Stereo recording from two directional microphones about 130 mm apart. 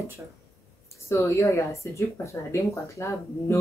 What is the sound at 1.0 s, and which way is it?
Speech, 20° left (ahead or behind).